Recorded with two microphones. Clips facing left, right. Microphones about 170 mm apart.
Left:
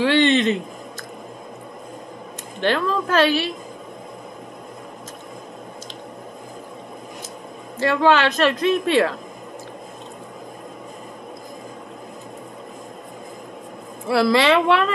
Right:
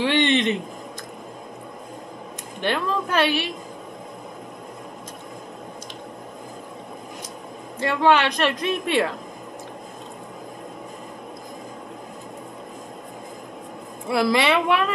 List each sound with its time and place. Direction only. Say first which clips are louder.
0.0 s a sound: left 3 dB; 15° right (ahead or behind)
2.6 s a woman's voice: left 3 dB; 15° right (ahead or behind)
7.8 s a woman's voice: left 2 dB; 15° right (ahead or behind)
14.0 s a woman's voice: left 3 dB; 15° right (ahead or behind)